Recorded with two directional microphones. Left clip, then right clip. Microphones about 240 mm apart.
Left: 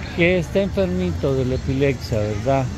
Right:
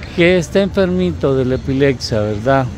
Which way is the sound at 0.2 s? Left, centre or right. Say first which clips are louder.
Right 6 dB; right.